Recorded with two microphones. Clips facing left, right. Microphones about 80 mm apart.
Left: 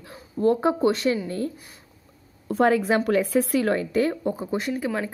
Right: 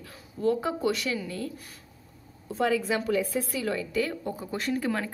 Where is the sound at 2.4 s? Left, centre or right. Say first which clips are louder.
Left 6 dB; left.